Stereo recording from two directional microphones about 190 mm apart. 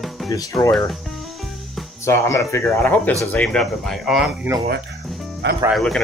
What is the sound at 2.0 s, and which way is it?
Speech, 15° left (ahead or behind).